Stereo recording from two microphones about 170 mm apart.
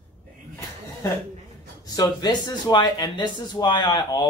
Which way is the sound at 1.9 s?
25° left (ahead or behind).